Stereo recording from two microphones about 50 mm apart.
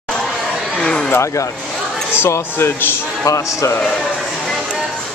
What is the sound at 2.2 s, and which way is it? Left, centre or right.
Speech, left.